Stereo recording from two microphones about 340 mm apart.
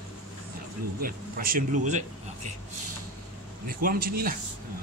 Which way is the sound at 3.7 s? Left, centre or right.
Right.